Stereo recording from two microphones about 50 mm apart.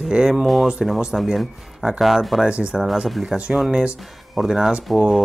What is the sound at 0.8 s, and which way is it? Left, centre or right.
Speech, centre.